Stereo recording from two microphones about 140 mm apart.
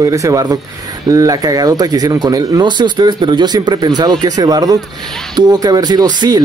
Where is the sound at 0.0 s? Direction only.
25° right (ahead or behind).